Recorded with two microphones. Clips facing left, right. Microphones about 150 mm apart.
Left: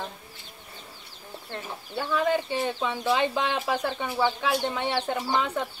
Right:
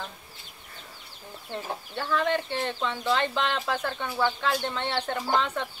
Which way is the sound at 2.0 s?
10° left (ahead or behind).